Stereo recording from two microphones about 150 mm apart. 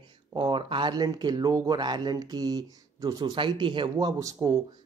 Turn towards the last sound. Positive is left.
turn(degrees=-20)  # may be behind; listen again after turning